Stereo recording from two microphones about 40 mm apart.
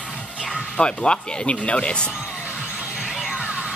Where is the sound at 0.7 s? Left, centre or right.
Left.